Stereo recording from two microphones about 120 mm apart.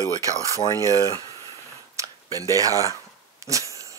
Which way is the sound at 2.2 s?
30° right (ahead or behind).